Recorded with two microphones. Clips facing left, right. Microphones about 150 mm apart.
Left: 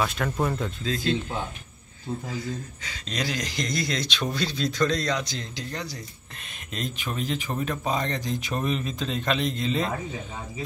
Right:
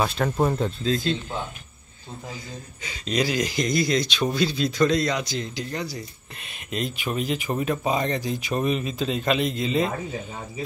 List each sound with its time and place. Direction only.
0.0 s speech: 30° right (ahead or behind)
2.8 s speech: 10° right (ahead or behind)